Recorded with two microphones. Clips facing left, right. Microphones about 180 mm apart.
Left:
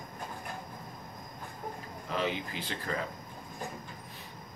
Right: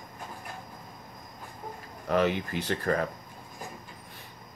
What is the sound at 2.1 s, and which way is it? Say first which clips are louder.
Speech: right 7 dB; 55° right (ahead or behind).